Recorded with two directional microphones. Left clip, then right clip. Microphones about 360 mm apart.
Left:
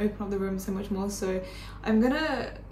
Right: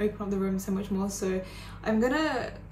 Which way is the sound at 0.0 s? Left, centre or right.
Centre.